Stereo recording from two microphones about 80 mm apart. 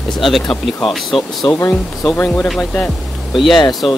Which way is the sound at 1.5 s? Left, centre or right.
Left.